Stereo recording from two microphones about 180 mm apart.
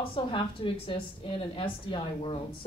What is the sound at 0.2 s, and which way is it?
A woman's voice, 30° left (ahead or behind).